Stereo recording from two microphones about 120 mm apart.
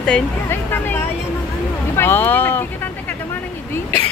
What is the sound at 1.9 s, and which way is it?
Speech, 20° left (ahead or behind).